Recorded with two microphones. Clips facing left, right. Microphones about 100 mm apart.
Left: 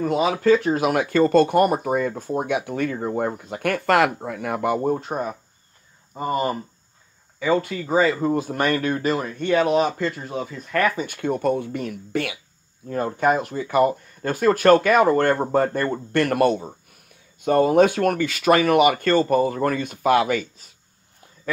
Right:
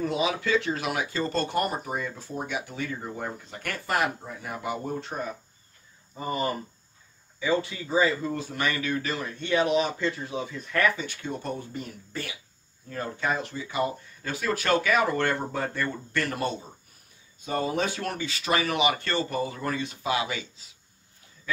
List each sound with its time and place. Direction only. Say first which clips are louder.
0.0 s speech: left 7 dB; 45° left (ahead or behind)
4.9 s speech: left 6 dB; 45° left (ahead or behind); by 12.4 s 70° left (ahead or behind)
12.8 s speech: left 9 dB; 55° left (ahead or behind)